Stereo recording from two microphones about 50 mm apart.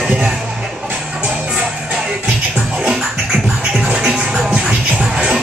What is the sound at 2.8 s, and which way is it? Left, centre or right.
Scratching, centre.